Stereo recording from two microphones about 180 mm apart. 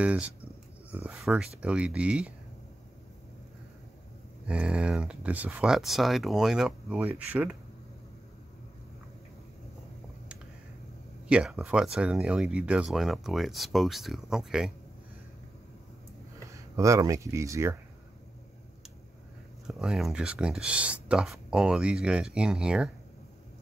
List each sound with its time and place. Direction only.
0.0 s speech: 5° right (ahead or behind)
4.5 s speech: 5° right (ahead or behind)
11.2 s speech: 5° right (ahead or behind)
16.3 s speech: 15° right (ahead or behind)
19.7 s speech: centre (ahead or behind)